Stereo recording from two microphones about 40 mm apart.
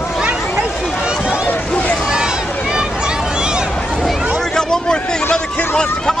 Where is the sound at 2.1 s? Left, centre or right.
Centre.